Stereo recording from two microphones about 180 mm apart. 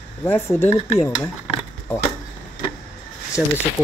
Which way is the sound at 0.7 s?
35° left (ahead or behind).